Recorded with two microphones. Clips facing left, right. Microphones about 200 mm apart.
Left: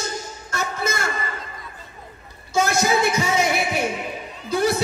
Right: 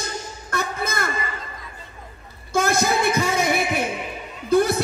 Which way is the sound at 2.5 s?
55° right (ahead or behind).